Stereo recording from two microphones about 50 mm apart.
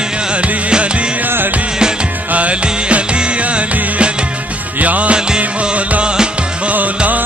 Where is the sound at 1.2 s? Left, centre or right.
Right.